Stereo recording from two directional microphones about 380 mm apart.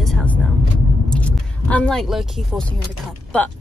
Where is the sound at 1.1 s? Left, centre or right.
Centre.